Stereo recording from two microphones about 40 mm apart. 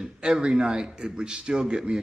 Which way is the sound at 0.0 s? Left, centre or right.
Right.